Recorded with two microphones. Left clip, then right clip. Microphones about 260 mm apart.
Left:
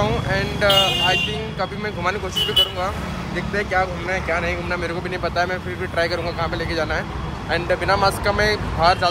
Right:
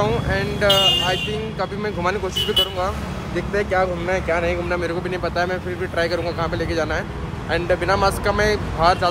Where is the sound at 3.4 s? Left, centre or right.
Centre.